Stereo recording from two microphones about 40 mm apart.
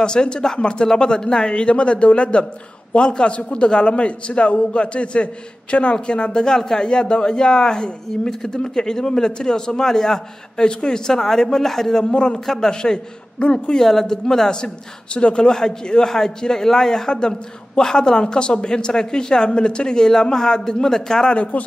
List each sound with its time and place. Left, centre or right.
0.0 s a man's voice: left
8.3 s a man's voice: centre; by 13.7 s left
13.7 s a man's voice: centre
21.4 s speech: left